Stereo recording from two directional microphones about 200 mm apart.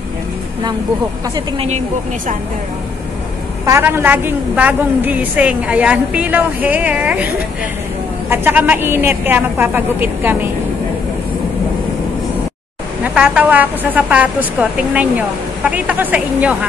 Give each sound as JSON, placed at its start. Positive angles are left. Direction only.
{"t": 1.3, "sound": "speech", "side_deg": -30}
{"t": 3.6, "sound": "a woman's voice", "side_deg": -15}
{"t": 8.3, "sound": "a woman's voice", "side_deg": -10}
{"t": 13.0, "sound": "a woman's voice", "side_deg": -5}